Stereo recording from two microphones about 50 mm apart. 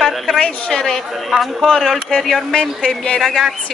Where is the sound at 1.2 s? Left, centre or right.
Centre.